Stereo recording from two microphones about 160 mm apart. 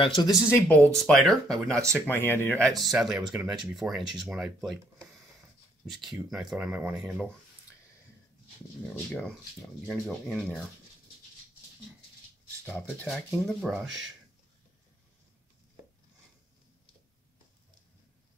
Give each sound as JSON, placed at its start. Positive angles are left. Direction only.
{"t": 0.0, "sound": "speech", "side_deg": 30}
{"t": 0.5, "sound": "speech", "side_deg": 15}
{"t": 0.9, "sound": "speech", "side_deg": 0}
{"t": 1.8, "sound": "speech", "side_deg": -20}
{"t": 2.0, "sound": "speech", "side_deg": 15}
{"t": 9.8, "sound": "speech", "side_deg": 0}
{"t": 12.6, "sound": "speech", "side_deg": 10}